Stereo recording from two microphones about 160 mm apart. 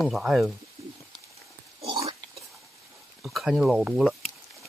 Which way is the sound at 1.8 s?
35° right (ahead or behind).